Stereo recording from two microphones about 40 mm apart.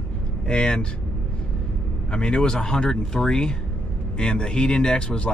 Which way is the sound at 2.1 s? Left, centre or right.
Left.